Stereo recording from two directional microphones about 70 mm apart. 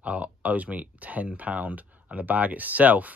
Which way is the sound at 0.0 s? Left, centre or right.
Centre.